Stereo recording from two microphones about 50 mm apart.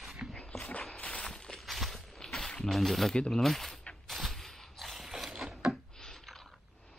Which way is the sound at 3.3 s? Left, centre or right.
Centre.